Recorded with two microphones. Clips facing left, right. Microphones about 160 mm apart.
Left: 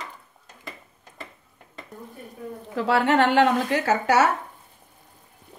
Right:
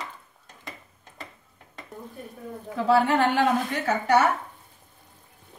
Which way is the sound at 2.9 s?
75° left (ahead or behind).